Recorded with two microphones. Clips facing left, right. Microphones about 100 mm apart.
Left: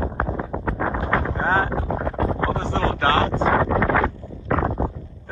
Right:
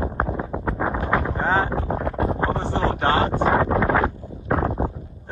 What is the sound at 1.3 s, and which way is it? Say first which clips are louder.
Wind noise: even; 15° right (ahead or behind).